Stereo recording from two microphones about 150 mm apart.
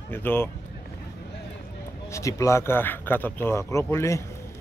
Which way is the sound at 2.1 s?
20° left (ahead or behind).